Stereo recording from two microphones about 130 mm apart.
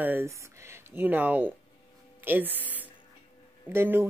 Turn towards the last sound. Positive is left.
turn(degrees=-15)  # may be behind; listen again after turning